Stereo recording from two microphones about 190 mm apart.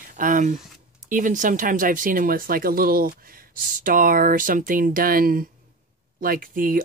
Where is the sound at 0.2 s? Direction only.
45° right (ahead or behind).